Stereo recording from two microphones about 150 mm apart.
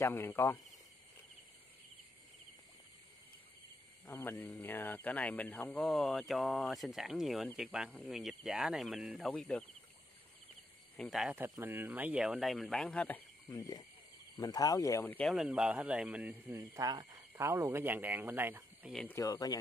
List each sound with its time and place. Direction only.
0.0 s speech: 15° left (ahead or behind)
4.0 s speech: 15° left (ahead or behind)
11.0 s speech: centre (ahead or behind)
11.3 s speech: 15° right (ahead or behind); by 13.2 s 10° left (ahead or behind)
13.5 s speech: 25° left (ahead or behind)
15.3 s speech: 5° right (ahead or behind)
19.1 s speech: 25° left (ahead or behind)